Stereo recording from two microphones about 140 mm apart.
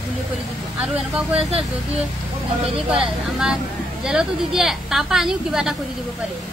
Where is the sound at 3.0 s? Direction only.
5° right (ahead or behind).